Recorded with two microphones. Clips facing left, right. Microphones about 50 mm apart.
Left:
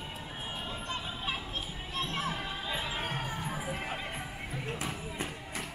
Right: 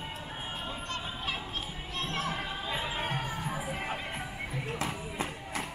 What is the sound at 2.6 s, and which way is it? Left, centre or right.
Music, right.